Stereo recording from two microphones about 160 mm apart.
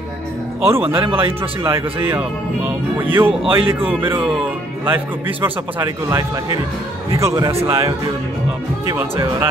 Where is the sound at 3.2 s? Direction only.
35° right (ahead or behind).